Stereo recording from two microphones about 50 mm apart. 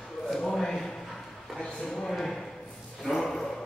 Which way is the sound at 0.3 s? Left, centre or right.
Centre.